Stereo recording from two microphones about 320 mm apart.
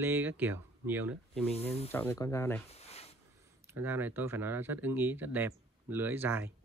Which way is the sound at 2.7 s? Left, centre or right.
Centre.